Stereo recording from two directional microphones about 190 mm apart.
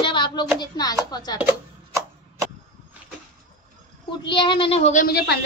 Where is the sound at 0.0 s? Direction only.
25° left (ahead or behind).